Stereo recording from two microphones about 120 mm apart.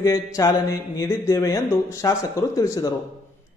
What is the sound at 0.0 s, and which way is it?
A man's voice, 30° left (ahead or behind).